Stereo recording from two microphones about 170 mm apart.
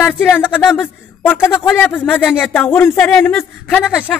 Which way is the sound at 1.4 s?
5° right (ahead or behind).